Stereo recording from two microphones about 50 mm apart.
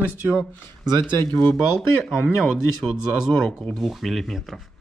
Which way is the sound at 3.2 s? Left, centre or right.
Centre.